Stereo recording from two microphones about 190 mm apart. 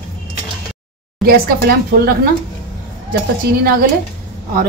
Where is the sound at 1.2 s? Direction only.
55° right (ahead or behind).